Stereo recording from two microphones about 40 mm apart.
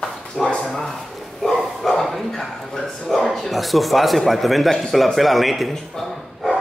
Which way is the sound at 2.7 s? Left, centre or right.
Centre.